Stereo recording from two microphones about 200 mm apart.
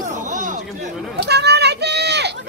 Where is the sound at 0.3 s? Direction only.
40° right (ahead or behind).